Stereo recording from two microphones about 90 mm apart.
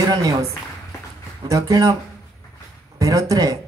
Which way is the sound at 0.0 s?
45° right (ahead or behind).